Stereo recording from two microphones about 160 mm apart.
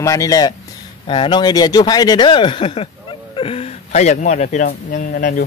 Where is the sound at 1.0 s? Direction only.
30° left (ahead or behind); by 5.4 s 60° left (ahead or behind).